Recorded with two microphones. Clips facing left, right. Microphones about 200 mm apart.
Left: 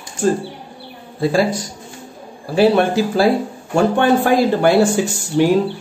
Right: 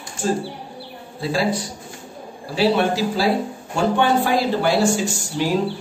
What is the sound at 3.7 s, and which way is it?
Speech, 55° left (ahead or behind).